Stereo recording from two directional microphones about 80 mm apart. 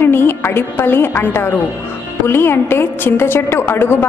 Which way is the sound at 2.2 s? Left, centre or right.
Left.